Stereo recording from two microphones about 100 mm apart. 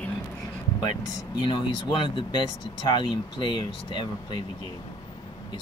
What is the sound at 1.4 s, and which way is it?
Speech, 55° left (ahead or behind).